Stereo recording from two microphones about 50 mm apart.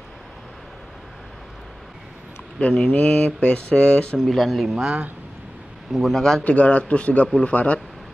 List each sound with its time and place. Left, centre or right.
2.9 s speech: left
4.3 s speech: centre
4.8 s speech: right
5.9 s speech: centre
6.4 s speech: left